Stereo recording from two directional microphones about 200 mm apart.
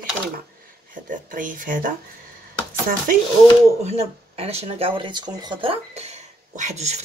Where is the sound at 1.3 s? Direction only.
40° right (ahead or behind).